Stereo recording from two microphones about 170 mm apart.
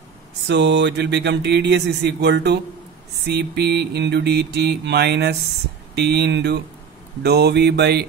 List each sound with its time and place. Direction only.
0.5 s speech: 90° right
3.3 s mantra: 75° right (ahead or behind)